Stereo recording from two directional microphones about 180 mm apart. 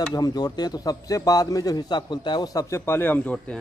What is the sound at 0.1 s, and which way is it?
A man's voice, 20° left (ahead or behind).